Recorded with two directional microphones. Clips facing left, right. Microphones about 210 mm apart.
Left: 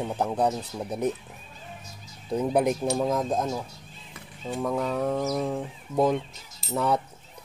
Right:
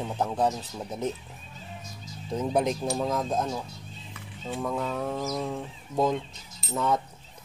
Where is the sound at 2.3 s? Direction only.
10° left (ahead or behind).